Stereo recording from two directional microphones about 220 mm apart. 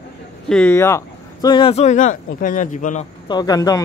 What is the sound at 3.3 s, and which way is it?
Speech, 20° left (ahead or behind).